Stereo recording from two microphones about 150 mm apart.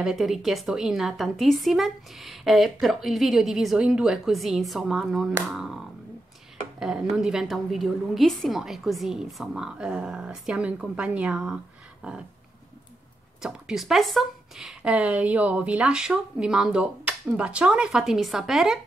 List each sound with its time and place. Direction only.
0.0 s a woman's voice: centre (ahead or behind)
13.4 s a woman's voice: 5° right (ahead or behind)